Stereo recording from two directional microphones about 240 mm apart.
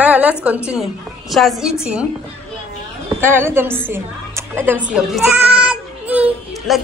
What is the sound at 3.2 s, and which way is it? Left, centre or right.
Music, centre.